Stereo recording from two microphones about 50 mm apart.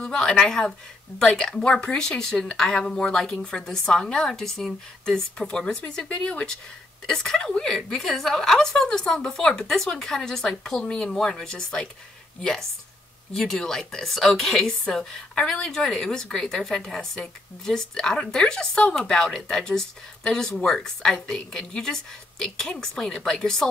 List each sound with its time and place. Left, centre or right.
0.0 s speech: centre
7.1 s speech: centre